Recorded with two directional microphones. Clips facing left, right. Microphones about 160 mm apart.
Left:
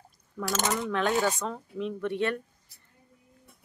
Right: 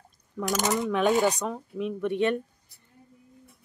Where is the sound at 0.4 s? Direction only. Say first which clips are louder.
Right 3 dB; 15° right (ahead or behind).